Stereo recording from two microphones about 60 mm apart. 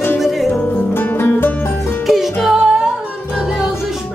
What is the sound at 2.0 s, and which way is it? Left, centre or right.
Music, centre.